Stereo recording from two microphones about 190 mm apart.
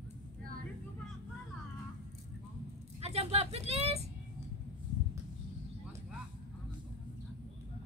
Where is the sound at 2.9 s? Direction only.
35° right (ahead or behind).